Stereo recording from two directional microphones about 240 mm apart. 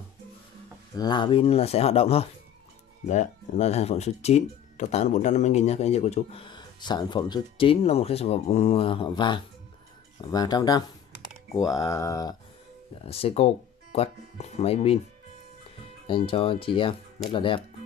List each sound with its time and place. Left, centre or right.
0.9 s speech: centre
13.0 s speech: left
16.1 s speech: left